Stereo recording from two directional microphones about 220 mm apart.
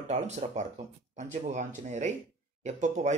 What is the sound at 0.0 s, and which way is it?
Speech, 30° right (ahead or behind).